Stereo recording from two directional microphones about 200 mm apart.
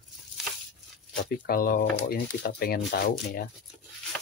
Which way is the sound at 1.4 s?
45° left (ahead or behind).